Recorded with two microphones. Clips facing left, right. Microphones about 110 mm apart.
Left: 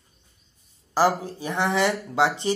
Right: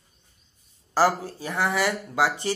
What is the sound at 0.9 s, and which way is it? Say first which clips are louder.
Speech: left 1 dB; 20° left (ahead or behind).